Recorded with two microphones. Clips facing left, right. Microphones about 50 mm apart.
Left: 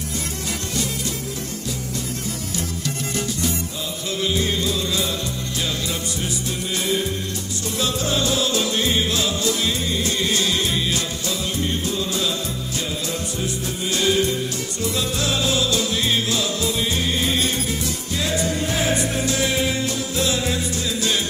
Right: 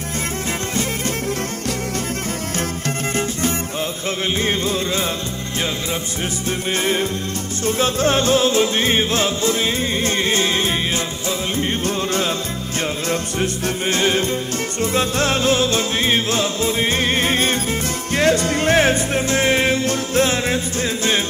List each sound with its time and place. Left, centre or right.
4.4 s music: right
7.6 s music: right
13.8 s music: right